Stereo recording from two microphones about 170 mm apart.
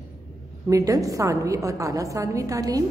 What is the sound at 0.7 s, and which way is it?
A woman's voice, 20° right (ahead or behind).